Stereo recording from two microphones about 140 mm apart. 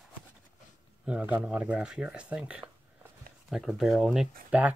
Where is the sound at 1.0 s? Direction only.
10° right (ahead or behind).